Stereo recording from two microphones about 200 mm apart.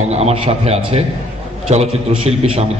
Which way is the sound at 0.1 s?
30° right (ahead or behind).